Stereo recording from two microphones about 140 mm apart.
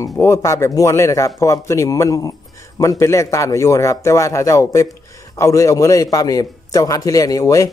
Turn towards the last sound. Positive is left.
turn(degrees=25)  # may be behind; listen again after turning